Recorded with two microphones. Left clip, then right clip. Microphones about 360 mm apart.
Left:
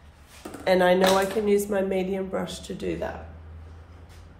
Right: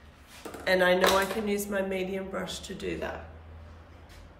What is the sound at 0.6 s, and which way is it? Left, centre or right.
Speech, centre.